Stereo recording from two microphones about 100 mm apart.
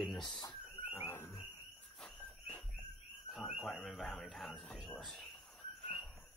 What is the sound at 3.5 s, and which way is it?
Speech, centre (ahead or behind).